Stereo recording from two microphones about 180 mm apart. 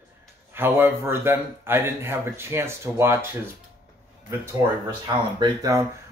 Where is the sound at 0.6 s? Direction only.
10° right (ahead or behind).